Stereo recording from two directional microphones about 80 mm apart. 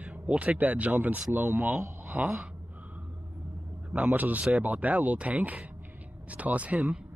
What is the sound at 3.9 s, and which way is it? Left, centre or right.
Speech, centre.